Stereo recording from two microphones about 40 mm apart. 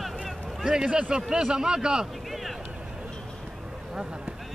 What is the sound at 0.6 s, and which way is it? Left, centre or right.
A man's voice, centre.